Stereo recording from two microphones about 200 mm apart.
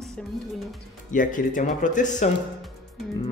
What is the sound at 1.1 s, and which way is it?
Speech, 40° left (ahead or behind).